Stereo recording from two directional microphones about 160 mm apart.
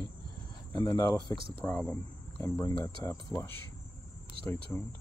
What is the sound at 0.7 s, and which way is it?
Speech, 25° left (ahead or behind).